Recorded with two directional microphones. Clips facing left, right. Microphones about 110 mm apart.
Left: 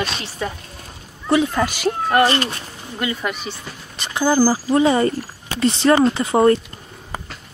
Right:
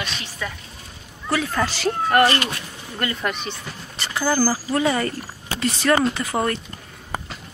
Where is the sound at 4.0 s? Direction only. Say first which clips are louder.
Left 4 dB; 20° left (ahead or behind).